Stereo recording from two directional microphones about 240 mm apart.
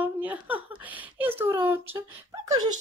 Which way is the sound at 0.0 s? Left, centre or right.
Centre.